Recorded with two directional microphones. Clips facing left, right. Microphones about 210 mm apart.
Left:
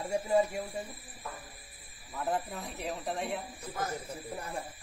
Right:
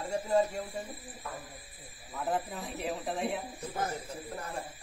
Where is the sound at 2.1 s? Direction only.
Centre (ahead or behind).